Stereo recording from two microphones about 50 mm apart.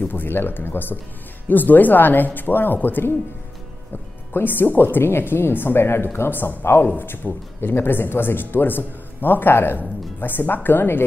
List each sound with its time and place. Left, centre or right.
0.1 s speech: left
4.3 s speech: left
6.9 s speech: left